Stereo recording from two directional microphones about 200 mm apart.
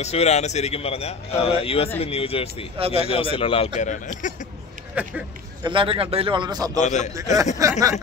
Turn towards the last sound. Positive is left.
turn(degrees=-15)  # may be behind; listen again after turning